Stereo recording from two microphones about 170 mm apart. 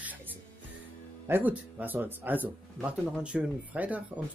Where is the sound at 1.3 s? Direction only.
10° right (ahead or behind).